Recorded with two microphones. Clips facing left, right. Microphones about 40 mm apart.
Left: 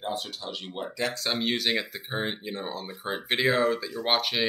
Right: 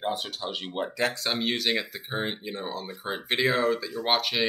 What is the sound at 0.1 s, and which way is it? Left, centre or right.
Speech, right.